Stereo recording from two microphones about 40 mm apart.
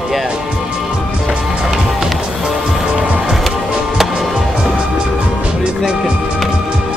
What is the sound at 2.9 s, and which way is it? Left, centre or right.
Music, right.